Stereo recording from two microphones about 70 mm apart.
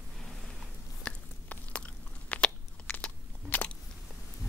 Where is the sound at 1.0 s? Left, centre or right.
Centre.